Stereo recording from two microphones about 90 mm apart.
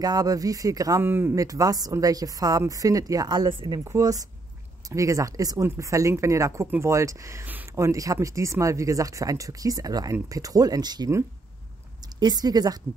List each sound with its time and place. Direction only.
0.0 s speech: 45° right (ahead or behind)
1.0 s speech: 25° right (ahead or behind)
1.3 s speech: 40° right (ahead or behind)
4.0 s speech: 40° right (ahead or behind)
12.2 s speech: 50° right (ahead or behind)